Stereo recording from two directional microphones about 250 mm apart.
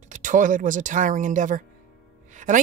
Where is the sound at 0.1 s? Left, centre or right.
Right.